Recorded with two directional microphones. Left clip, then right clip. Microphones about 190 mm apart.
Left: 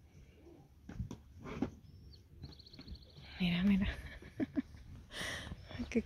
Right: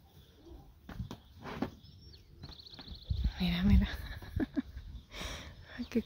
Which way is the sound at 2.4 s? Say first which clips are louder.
Right 6 dB; 15° right (ahead or behind).